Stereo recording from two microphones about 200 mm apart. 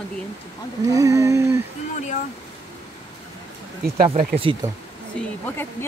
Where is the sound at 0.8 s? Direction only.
15° right (ahead or behind).